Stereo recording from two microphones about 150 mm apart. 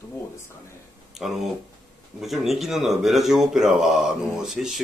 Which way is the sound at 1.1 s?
Centre (ahead or behind).